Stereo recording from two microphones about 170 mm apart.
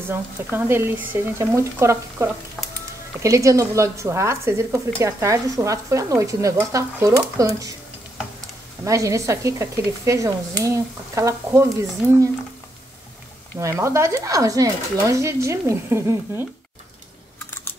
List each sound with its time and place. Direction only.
0.1 s a woman's voice: 15° right (ahead or behind)
8.8 s a woman's voice: 20° right (ahead or behind)
13.6 s a woman's voice: 15° right (ahead or behind)